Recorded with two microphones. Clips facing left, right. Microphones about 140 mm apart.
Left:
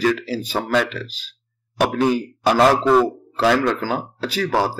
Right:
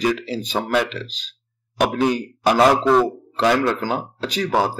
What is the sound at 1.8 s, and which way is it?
A man's voice, 5° right (ahead or behind).